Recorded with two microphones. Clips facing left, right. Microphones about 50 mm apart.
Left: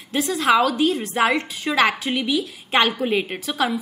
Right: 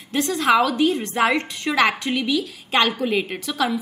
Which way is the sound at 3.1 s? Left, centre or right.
Left.